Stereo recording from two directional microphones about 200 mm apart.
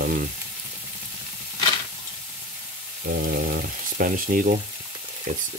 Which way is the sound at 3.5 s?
45° right (ahead or behind).